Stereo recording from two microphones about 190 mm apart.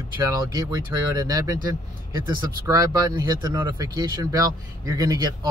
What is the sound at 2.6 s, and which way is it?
Speech, 20° right (ahead or behind).